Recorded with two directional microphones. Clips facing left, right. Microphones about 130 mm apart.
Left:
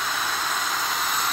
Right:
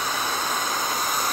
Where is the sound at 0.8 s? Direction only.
20° right (ahead or behind).